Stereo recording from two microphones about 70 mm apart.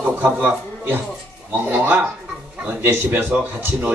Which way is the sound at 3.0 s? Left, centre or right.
Right.